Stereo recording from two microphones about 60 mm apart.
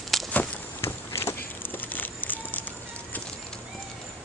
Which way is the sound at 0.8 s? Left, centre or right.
Left.